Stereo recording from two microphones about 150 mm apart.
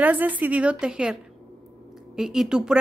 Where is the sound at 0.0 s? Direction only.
10° right (ahead or behind).